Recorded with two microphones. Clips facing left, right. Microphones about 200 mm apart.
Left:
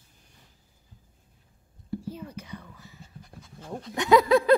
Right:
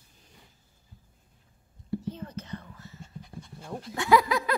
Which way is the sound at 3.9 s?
20° left (ahead or behind).